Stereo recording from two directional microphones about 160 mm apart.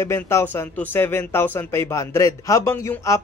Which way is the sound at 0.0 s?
15° left (ahead or behind).